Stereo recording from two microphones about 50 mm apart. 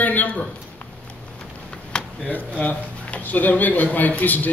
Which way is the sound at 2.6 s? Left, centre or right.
Left.